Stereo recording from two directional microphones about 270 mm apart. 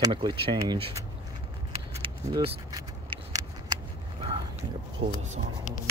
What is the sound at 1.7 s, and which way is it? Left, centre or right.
Vehicle, centre.